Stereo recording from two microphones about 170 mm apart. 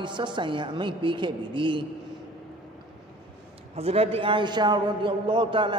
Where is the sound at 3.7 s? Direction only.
35° right (ahead or behind).